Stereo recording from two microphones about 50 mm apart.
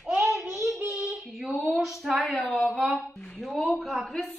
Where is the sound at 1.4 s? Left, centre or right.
Centre.